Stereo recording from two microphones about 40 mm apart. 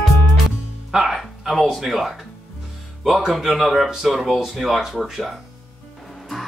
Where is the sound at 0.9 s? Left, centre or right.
Centre.